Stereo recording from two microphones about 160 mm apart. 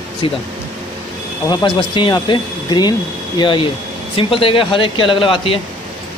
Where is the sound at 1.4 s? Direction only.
25° left (ahead or behind).